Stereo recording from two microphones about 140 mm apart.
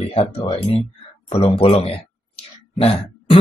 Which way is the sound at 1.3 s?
45° left (ahead or behind).